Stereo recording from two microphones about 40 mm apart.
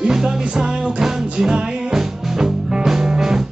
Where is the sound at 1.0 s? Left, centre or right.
Centre.